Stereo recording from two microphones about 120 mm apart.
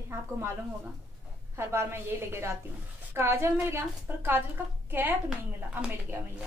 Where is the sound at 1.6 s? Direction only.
20° right (ahead or behind).